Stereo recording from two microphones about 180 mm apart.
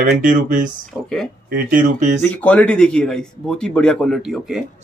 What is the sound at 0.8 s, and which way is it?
Speech, 5° left (ahead or behind).